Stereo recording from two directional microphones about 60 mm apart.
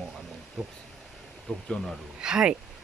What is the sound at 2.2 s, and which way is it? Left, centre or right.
Speech, centre.